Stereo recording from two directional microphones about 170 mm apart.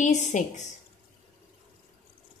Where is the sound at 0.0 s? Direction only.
45° left (ahead or behind).